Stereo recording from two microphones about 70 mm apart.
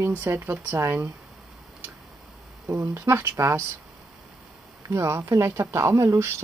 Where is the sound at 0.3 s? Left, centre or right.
Right.